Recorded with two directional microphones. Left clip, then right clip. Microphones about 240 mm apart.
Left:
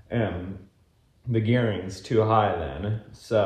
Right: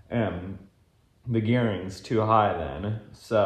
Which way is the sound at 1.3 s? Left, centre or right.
Right.